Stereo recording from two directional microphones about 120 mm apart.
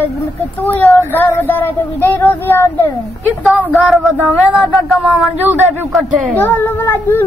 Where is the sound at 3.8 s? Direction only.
Centre (ahead or behind).